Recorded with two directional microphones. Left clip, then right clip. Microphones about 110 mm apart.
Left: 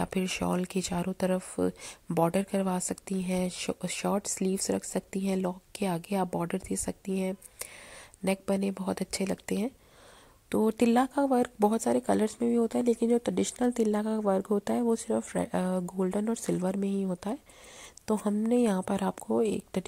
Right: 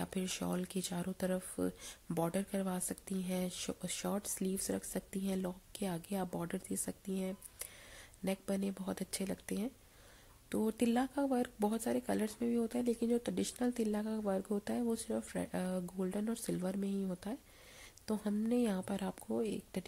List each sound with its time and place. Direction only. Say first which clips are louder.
0.0 s speech: left 9 dB; 35° left (ahead or behind)